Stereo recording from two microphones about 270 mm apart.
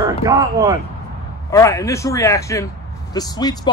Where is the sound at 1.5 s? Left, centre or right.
Centre.